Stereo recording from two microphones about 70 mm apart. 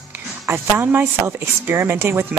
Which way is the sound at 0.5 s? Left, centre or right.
Right.